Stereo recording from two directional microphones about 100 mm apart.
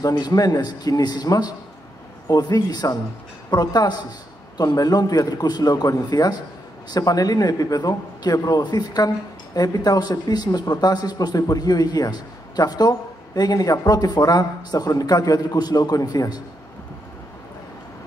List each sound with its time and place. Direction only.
0.0 s a man's voice: 40° left (ahead or behind)